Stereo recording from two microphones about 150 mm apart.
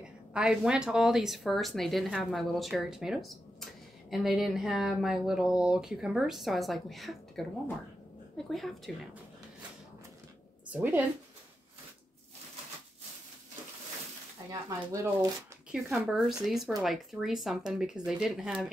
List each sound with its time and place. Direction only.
0.0 s a woman's voice: 5° right (ahead or behind)
8.5 s a woman's voice: centre (ahead or behind)
10.7 s a woman's voice: 10° right (ahead or behind)
14.5 s speech: 20° right (ahead or behind)
15.7 s a woman's voice: 5° right (ahead or behind)